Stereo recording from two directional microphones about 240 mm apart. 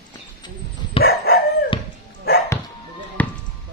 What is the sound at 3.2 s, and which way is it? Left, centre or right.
Basketball bounce, centre.